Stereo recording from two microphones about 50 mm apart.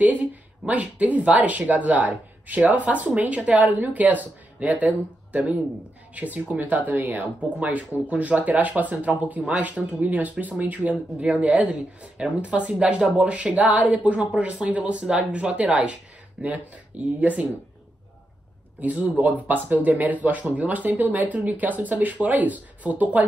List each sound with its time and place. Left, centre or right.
0.0 s speech: right
18.8 s speech: right